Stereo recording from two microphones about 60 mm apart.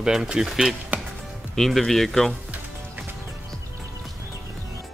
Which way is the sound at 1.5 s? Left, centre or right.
Centre.